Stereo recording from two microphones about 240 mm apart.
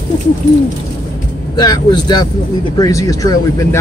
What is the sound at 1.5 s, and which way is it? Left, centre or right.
Speech, centre.